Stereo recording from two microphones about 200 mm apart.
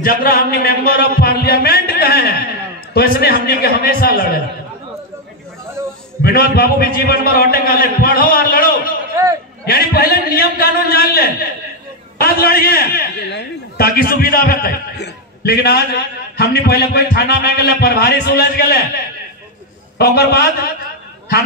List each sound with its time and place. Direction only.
0.0 s a sound: 50° left (ahead or behind)
2.9 s a man's voice: 50° left (ahead or behind)
6.2 s a man's voice: 50° left (ahead or behind)
20.0 s a man's voice: 50° left (ahead or behind)